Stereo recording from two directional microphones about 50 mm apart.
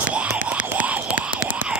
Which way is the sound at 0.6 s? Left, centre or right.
Right.